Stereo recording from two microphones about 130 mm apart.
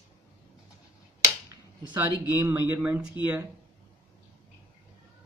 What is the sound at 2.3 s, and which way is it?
A man's voice, 20° right (ahead or behind).